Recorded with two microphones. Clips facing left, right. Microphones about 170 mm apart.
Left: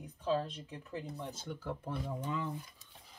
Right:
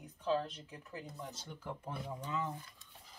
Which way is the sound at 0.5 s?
25° left (ahead or behind).